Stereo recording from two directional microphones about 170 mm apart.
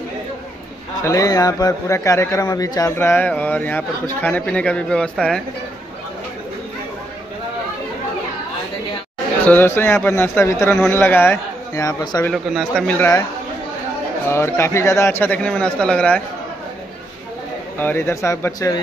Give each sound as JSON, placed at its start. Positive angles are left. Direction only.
{"t": 1.0, "sound": "a man's voice", "side_deg": 20}
{"t": 9.5, "sound": "a man's voice", "side_deg": 10}
{"t": 12.3, "sound": "speech", "side_deg": 0}
{"t": 14.3, "sound": "a man's voice", "side_deg": 15}
{"t": 17.7, "sound": "a man's voice", "side_deg": 15}